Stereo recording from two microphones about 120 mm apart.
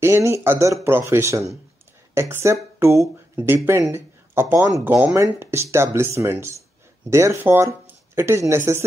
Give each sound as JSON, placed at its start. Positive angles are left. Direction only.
{"t": 0.0, "sound": "speech", "side_deg": -20}